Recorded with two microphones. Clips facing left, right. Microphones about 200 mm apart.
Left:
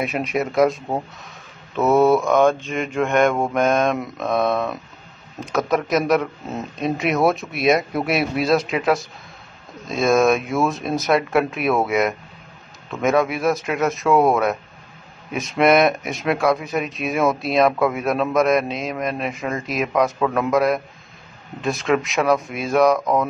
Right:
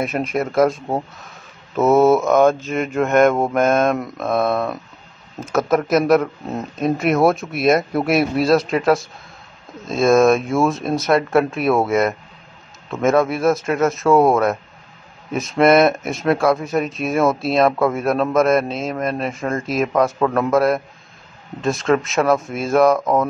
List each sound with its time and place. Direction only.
0.0 s speech: centre (ahead or behind)
19.4 s speech: 45° right (ahead or behind)
19.9 s speech: centre (ahead or behind)